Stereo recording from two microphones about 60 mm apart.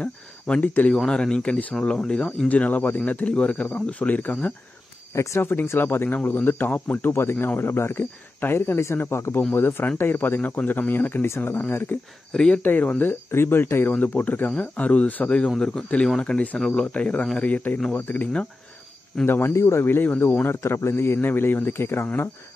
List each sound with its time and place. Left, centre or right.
0.0 s speech: left
0.9 s speech: centre; by 4.6 s left
5.1 s speech: left
5.4 s speech: left
11.2 s speech: left
11.5 s speech: left
12.3 s speech: centre
12.6 s speech: left
13.3 s speech: left
13.9 s speech: left
15.5 s speech: centre; by 20.5 s left
20.6 s speech: left